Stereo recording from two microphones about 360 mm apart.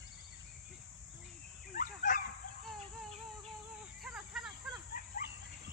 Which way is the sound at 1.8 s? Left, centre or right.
Left.